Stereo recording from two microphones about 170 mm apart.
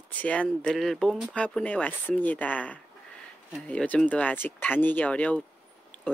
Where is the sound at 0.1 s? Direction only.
10° left (ahead or behind).